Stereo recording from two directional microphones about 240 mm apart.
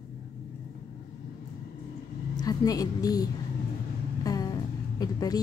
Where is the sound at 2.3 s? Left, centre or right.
Centre.